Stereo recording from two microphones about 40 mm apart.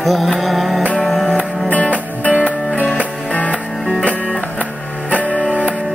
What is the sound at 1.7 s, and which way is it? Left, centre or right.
Music, left.